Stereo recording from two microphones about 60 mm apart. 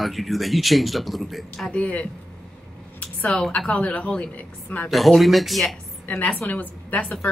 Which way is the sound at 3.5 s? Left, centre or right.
Left.